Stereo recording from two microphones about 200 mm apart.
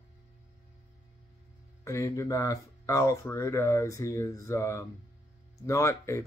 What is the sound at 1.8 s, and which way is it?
Speech, 15° left (ahead or behind).